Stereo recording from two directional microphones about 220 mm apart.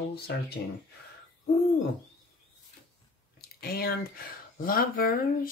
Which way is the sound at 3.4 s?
45° left (ahead or behind).